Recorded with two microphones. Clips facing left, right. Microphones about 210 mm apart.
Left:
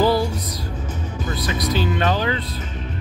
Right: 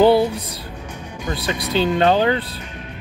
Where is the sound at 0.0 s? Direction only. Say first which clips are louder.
Right 5 dB; 60° right (ahead or behind).